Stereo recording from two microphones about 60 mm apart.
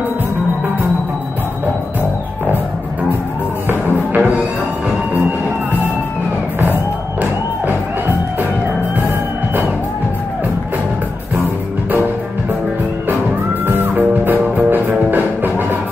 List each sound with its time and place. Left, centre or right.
3.9 s music: right
13.7 s music: right